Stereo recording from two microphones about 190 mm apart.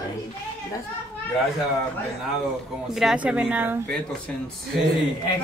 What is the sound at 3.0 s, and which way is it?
Speech, 5° right (ahead or behind).